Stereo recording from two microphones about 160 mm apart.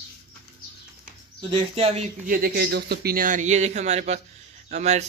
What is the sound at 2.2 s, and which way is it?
Speech, 70° right (ahead or behind).